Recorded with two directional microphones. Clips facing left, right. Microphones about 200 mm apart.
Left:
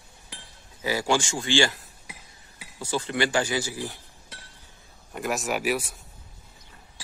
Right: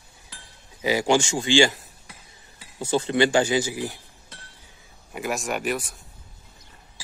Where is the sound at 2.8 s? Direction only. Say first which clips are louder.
Right 6 dB; 25° right (ahead or behind).